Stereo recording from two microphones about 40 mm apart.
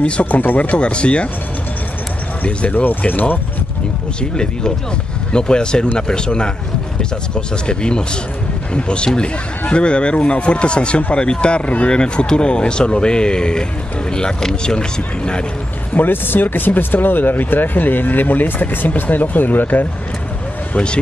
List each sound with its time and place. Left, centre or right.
0.0 s a man's voice: left
2.4 s speech: left
4.2 s a man's voice: left
11.9 s a man's voice: left
16.1 s speech: left
20.7 s a man's voice: left